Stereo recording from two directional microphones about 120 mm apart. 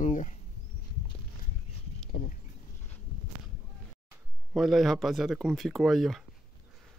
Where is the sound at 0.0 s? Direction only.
85° left.